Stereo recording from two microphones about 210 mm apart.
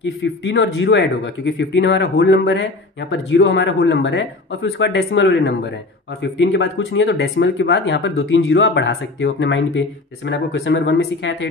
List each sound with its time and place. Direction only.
0.0 s speech: 60° left (ahead or behind)